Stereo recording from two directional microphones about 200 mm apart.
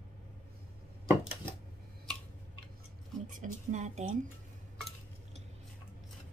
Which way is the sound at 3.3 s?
40° right (ahead or behind).